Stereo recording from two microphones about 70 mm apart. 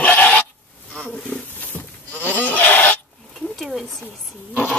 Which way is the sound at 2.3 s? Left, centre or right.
Left.